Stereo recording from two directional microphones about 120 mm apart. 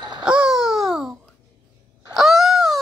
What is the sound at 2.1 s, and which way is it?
Wail, centre (ahead or behind).